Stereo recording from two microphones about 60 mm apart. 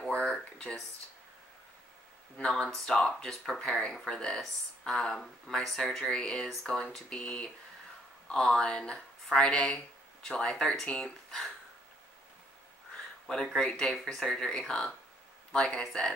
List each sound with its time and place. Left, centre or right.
2.3 s speech: centre
13.6 s speech: centre